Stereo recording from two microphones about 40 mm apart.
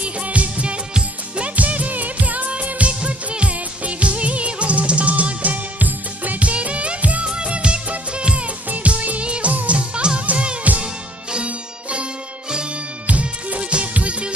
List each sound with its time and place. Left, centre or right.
0.0 s music: right
0.9 s music of bollywood: right
7.2 s music: right
8.6 s music of bollywood: right
9.5 s music: right
9.8 s music: right
10.6 s music: right